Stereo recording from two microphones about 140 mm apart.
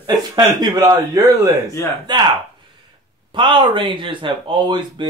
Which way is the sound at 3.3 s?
35° right (ahead or behind).